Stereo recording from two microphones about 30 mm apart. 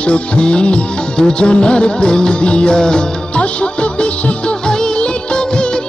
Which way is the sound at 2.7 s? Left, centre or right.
Left.